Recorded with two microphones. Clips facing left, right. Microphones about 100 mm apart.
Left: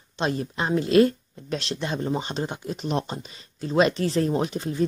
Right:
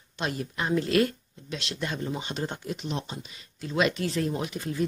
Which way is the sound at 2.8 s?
50° left (ahead or behind).